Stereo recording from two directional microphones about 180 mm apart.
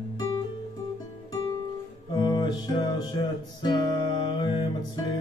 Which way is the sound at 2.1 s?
25° left (ahead or behind).